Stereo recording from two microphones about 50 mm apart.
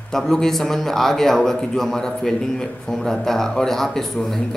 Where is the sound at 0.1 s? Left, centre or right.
Centre.